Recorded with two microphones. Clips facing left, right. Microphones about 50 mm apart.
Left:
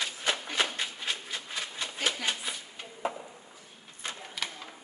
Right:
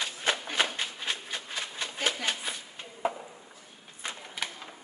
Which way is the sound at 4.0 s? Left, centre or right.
Centre.